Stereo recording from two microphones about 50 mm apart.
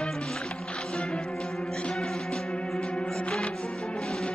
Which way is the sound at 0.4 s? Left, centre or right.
Left.